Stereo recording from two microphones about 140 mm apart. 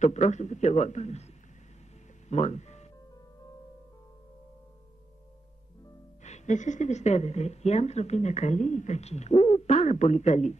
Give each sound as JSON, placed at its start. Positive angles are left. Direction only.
{"t": 0.0, "sound": "a man's voice", "side_deg": 55}
{"t": 2.2, "sound": "music", "side_deg": 55}
{"t": 6.2, "sound": "a woman's voice", "side_deg": 55}